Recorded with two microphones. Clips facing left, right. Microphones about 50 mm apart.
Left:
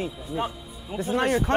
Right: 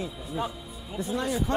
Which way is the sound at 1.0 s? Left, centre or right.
Left.